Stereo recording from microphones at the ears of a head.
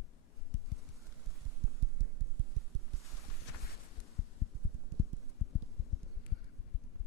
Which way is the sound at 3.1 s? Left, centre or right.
Left.